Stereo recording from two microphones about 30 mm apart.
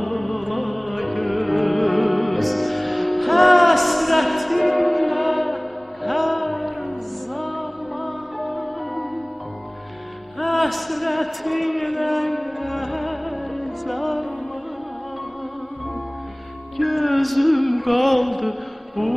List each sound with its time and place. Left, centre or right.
0.0 s music: centre
10.4 s a sound: centre
12.8 s music: centre
16.7 s music: centre